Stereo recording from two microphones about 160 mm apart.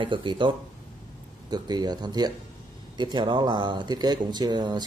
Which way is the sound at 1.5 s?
25° right (ahead or behind).